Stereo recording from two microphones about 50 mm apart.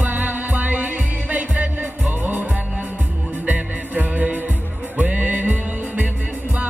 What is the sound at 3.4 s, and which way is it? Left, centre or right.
Music, right.